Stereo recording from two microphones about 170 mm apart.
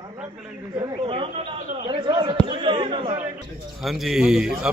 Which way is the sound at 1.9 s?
25° right (ahead or behind).